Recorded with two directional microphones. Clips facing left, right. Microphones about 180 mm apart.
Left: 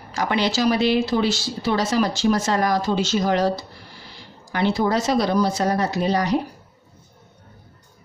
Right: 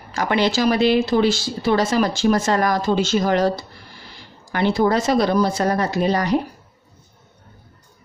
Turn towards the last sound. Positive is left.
turn(degrees=-55)  # may be behind; listen again after turning